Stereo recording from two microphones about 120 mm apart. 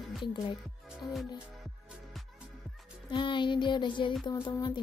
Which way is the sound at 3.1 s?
40° left (ahead or behind).